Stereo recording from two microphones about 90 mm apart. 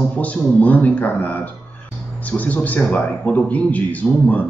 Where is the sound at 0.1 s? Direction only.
15° left (ahead or behind).